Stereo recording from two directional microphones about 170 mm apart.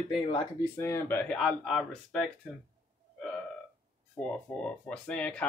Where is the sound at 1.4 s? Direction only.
Centre (ahead or behind).